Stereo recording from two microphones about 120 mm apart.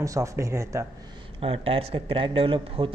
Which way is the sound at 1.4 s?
50° right (ahead or behind).